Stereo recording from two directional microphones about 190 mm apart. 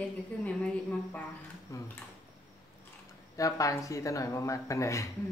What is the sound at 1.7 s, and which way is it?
Tick-tock, 15° left (ahead or behind).